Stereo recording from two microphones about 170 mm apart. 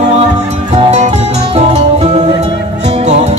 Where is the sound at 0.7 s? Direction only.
40° right (ahead or behind).